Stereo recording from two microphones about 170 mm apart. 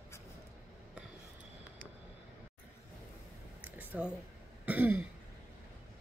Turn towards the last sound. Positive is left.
turn(degrees=-10)  # may be behind; listen again after turning